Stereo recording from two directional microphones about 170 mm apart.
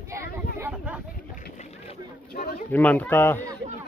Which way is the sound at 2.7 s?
10° left (ahead or behind).